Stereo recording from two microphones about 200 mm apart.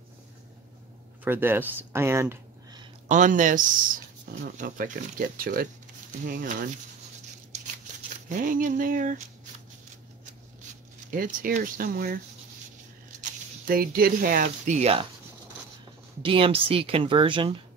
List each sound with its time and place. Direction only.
1.2 s speech: 10° right (ahead or behind)
3.1 s speech: 40° right (ahead or behind)
7.5 s a sound: 35° right (ahead or behind)
8.3 s speech: 40° right (ahead or behind)
11.1 s speech: 45° right (ahead or behind)
13.7 s speech: 45° right (ahead or behind); by 15.0 s 30° right (ahead or behind)
16.2 s speech: 25° right (ahead or behind)